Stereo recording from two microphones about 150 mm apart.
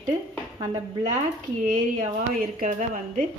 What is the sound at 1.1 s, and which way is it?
A woman's voice, 55° right (ahead or behind).